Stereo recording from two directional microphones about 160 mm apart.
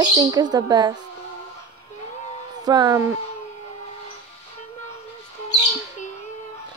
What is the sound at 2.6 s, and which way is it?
Speech, 25° right (ahead or behind).